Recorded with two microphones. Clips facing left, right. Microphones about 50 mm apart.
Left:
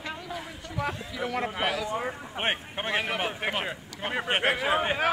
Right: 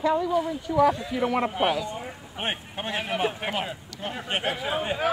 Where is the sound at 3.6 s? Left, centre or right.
Left.